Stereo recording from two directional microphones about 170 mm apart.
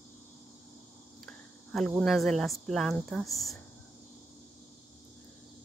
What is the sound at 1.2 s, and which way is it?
Speech, centre (ahead or behind).